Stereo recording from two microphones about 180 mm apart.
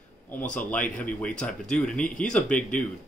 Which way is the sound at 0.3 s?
10° left (ahead or behind).